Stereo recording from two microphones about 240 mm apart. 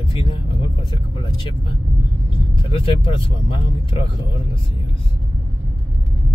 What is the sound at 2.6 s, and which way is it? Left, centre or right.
Speech, left.